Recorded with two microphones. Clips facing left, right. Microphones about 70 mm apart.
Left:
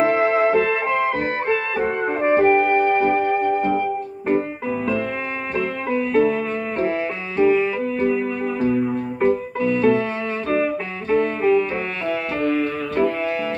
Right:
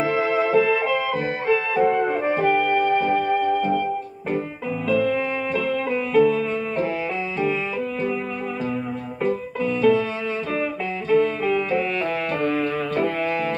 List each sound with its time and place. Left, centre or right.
0.0 s music: left
5.9 s music: left
7.3 s music: left
9.2 s keyboard: left
10.5 s music: left
12.4 s music: right